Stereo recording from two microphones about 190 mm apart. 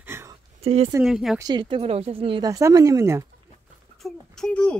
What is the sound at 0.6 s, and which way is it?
Speech, 30° right (ahead or behind).